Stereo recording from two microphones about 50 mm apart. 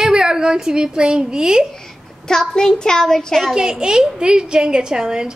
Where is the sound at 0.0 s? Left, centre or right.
Centre.